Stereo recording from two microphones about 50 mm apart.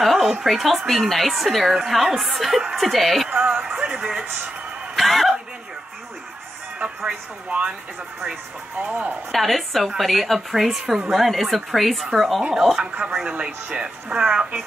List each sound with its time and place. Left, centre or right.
0.0 s speech: centre
3.3 s speech: centre
4.9 s a sound: centre
6.8 s speech: centre
8.7 s speech: right
9.3 s speech: centre
12.9 s speech: centre